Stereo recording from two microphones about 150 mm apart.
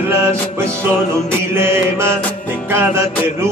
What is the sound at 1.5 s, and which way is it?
Music, 15° right (ahead or behind).